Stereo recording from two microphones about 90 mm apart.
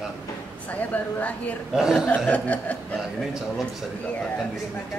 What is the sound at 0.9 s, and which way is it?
Speech, 15° left (ahead or behind).